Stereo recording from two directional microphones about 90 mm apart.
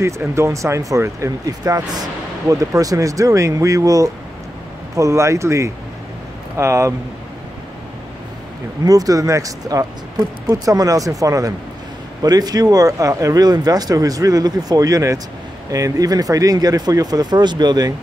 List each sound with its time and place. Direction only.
0.0 s speech: 30° right (ahead or behind)
8.8 s speech: 40° right (ahead or behind)